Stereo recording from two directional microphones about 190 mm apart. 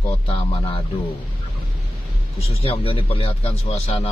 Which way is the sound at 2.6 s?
30° left (ahead or behind).